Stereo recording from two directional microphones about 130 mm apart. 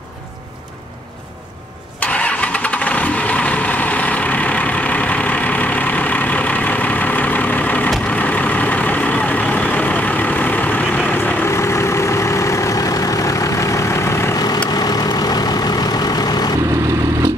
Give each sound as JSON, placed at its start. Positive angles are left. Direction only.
{"t": 2.0, "sound": "vehicle", "side_deg": 10}